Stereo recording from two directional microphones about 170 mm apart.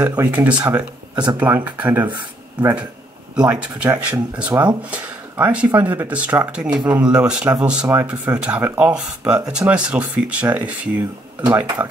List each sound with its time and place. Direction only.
0.0 s speech: 20° right (ahead or behind)
0.3 s speech: 10° right (ahead or behind)